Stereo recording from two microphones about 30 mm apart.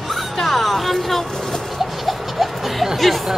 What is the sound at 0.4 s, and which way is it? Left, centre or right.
Music, centre.